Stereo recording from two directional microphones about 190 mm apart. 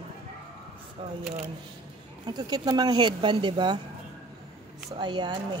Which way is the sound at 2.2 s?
20° right (ahead or behind).